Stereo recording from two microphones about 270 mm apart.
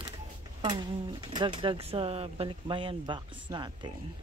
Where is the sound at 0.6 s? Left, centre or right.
Centre.